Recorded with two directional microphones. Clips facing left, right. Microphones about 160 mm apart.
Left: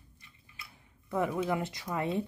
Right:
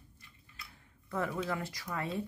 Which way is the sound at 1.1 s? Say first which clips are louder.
Left 5 dB; 15° left (ahead or behind).